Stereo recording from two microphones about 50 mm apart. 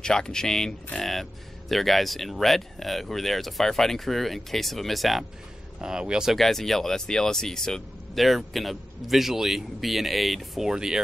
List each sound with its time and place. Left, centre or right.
0.0 s speech: centre
5.8 s speech: centre
6.3 s speech: centre
8.2 s speech: centre
10.7 s speech: centre